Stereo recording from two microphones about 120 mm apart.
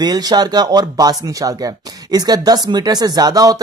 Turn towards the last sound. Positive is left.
turn(degrees=-30)  # may be behind; listen again after turning